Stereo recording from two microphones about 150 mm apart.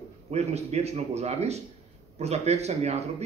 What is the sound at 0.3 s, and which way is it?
A man's voice, 45° right (ahead or behind).